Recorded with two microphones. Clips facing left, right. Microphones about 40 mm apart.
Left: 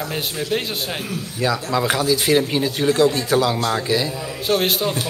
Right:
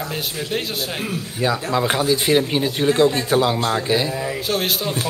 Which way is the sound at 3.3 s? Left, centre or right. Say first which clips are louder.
Even; centre.